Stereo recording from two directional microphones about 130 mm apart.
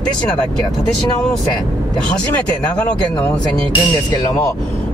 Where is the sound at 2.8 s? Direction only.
10° left (ahead or behind).